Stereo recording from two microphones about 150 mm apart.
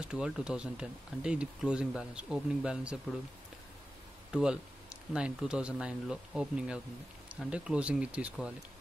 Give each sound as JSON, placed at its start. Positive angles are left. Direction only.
{"t": 0.0, "sound": "speech", "side_deg": -5}
{"t": 4.3, "sound": "speech", "side_deg": -5}